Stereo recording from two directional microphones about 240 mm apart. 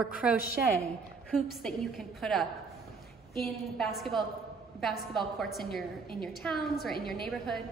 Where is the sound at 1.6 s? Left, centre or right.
Centre.